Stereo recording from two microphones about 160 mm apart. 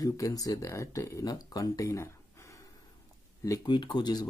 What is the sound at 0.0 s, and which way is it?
Speech, 20° left (ahead or behind).